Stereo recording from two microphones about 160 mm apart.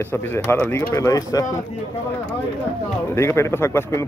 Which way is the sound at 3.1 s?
15° left (ahead or behind).